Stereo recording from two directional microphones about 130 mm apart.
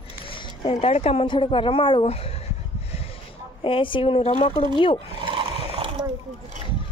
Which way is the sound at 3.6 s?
40° left (ahead or behind).